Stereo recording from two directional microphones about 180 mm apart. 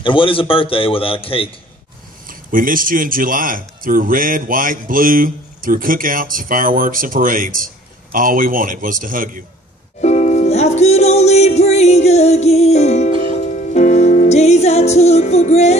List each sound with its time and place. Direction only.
0.0 s a man's voice: 30° left (ahead or behind)
2.2 s a man's voice: 50° right (ahead or behind)
10.0 s music: 40° left (ahead or behind)